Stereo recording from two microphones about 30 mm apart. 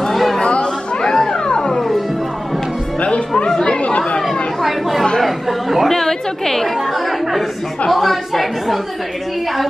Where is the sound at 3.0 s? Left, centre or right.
Left.